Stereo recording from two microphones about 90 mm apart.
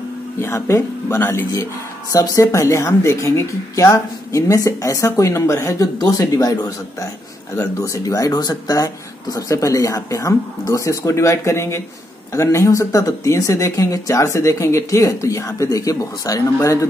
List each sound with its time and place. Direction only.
0.4 s speech: 30° left (ahead or behind)
5.9 s speech: 45° left (ahead or behind)